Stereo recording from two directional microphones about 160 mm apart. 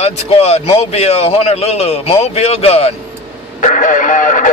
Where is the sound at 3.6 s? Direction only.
50° left (ahead or behind).